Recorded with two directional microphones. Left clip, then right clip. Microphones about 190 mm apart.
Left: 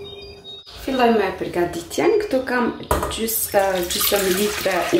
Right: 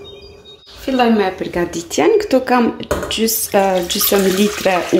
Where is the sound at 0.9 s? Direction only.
35° right (ahead or behind).